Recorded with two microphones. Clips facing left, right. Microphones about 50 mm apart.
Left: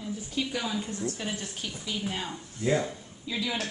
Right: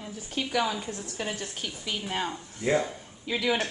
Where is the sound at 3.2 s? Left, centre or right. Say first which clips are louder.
Right 5 dB; right.